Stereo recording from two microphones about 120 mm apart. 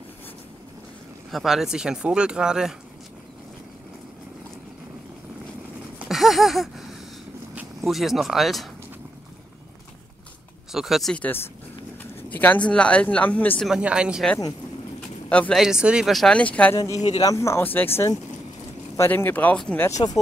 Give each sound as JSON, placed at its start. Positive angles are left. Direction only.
{"t": 1.3, "sound": "speech", "side_deg": 0}
{"t": 5.9, "sound": "a sound", "side_deg": 0}
{"t": 7.8, "sound": "speech", "side_deg": 0}
{"t": 10.7, "sound": "speech", "side_deg": -5}
{"t": 11.1, "sound": "speech", "side_deg": 15}
{"t": 13.7, "sound": "speech", "side_deg": -10}
{"t": 15.2, "sound": "speech", "side_deg": 10}
{"t": 15.5, "sound": "speech", "side_deg": -5}
{"t": 17.2, "sound": "speech", "side_deg": 25}
{"t": 20.0, "sound": "speech", "side_deg": 40}